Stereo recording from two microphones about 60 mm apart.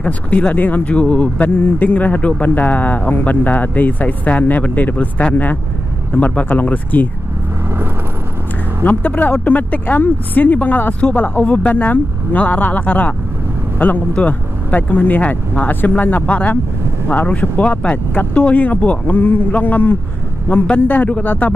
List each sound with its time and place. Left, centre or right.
0.0 s speech: left
8.8 s speech: left